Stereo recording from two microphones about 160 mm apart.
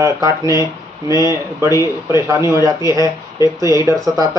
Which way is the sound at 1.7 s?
20° left (ahead or behind).